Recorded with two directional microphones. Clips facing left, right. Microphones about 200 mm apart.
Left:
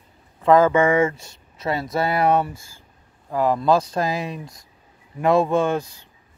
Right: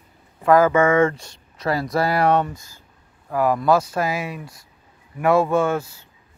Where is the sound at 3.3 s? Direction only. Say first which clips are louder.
Even; 20° left (ahead or behind).